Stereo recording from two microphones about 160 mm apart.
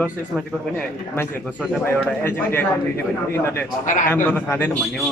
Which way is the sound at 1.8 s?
15° left (ahead or behind).